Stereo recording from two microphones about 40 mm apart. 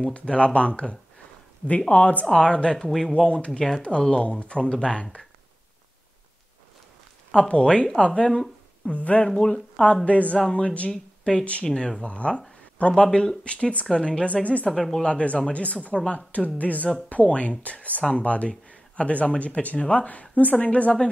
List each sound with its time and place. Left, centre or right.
0.0 s speech: left
2.3 s speech: left
7.4 s speech: left
8.3 s a sound: centre
8.9 s speech: left
9.3 s speech: centre
10.0 s speech: left
14.7 s speech: centre
15.0 s speech: left